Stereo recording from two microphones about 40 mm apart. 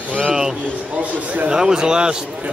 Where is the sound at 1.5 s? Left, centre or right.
Centre.